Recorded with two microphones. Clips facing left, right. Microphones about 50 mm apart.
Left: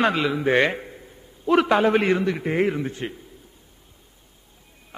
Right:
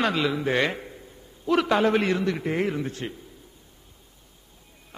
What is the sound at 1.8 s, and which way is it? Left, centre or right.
A man's voice, centre.